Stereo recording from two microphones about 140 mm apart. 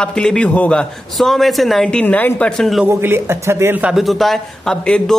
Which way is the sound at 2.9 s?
15° right (ahead or behind).